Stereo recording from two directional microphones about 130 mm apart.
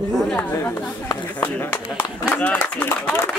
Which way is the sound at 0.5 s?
25° left (ahead or behind).